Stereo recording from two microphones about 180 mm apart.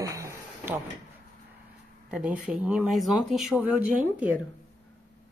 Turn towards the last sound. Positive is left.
turn(degrees=-5)  # may be behind; listen again after turning